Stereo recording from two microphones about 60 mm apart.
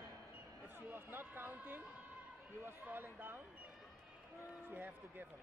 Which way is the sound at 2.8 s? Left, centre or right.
Right.